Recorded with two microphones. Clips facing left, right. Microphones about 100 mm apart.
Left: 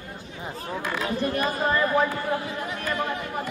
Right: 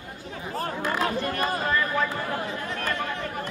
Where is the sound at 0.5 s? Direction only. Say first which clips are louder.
Right 3 dB; 55° right (ahead or behind).